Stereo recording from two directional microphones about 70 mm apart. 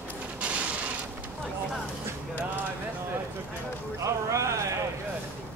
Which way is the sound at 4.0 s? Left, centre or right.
Right.